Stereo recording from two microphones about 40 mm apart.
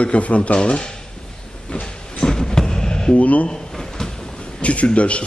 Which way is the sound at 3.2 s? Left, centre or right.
Left.